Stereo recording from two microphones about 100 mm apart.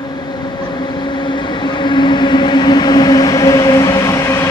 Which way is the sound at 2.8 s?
45° left (ahead or behind).